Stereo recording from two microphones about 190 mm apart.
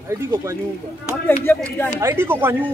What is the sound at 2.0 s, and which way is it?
Speech, 15° right (ahead or behind).